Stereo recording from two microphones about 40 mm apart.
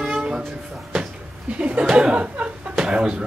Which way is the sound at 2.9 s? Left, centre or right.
Right.